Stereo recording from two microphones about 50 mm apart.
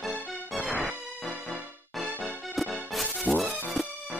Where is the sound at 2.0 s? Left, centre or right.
Centre.